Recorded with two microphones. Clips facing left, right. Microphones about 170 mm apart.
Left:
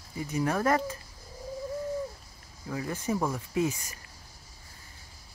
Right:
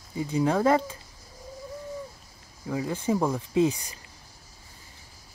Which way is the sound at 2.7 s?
15° right (ahead or behind).